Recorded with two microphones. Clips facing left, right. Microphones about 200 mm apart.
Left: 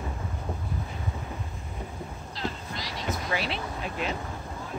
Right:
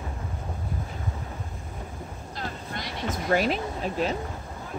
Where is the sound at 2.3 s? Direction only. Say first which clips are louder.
Even; 50° right (ahead or behind).